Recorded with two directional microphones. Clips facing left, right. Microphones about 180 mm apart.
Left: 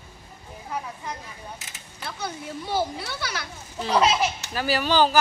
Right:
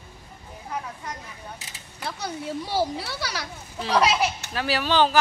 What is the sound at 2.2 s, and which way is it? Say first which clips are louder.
A child's voice: right 1 dB; 35° right (ahead or behind).